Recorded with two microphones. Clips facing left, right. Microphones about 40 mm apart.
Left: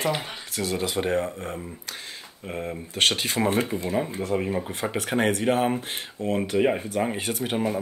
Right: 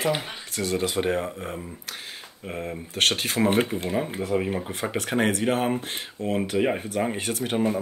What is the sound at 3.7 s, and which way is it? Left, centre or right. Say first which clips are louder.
Speech: even; left.